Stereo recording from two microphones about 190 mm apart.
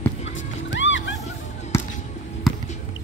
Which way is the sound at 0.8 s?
80° left.